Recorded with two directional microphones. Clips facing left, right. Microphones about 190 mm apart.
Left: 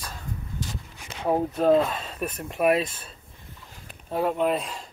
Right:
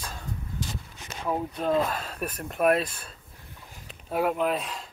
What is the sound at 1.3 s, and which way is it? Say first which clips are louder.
Speech: left 7 dB; 45° left (ahead or behind).